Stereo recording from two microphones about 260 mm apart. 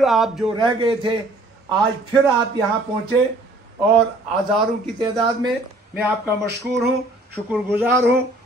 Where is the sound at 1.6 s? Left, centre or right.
Centre.